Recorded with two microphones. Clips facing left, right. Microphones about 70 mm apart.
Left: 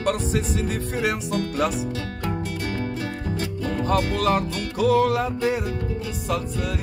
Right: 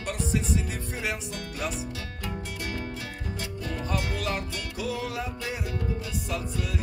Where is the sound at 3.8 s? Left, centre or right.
Left.